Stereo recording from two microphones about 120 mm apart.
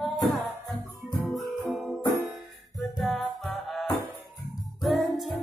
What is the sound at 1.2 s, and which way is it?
Music, centre (ahead or behind).